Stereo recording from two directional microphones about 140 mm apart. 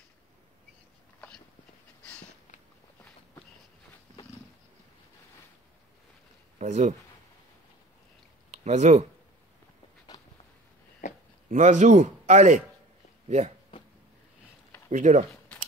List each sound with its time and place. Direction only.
6.6 s a man's voice: 60° right (ahead or behind)
8.5 s speech: 55° right (ahead or behind)
10.1 s a sound: 30° left (ahead or behind)
11.0 s a sound: 60° left (ahead or behind)
11.5 s a man's voice: 60° right (ahead or behind)
14.9 s a man's voice: 60° right (ahead or behind)